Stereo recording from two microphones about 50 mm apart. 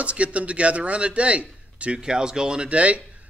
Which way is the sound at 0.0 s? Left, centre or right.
Right.